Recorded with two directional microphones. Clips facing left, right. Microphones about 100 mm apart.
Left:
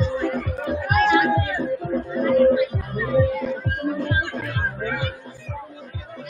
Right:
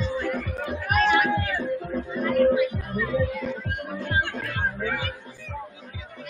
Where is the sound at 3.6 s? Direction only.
40° left (ahead or behind).